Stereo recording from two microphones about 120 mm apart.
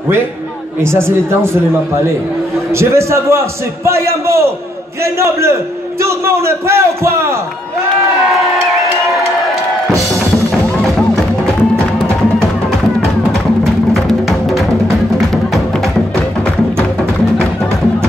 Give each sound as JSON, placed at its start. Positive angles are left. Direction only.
{"t": 0.9, "sound": "a man's voice", "side_deg": -20}
{"t": 2.7, "sound": "a man's voice", "side_deg": -20}
{"t": 11.0, "sound": "music", "side_deg": 5}